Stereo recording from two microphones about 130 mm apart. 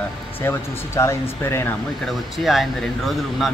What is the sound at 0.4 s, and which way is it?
Speech, 20° left (ahead or behind).